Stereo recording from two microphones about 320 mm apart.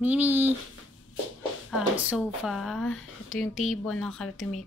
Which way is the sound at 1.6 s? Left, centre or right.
Centre.